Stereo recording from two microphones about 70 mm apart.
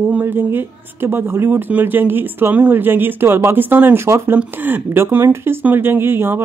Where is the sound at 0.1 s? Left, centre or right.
Right.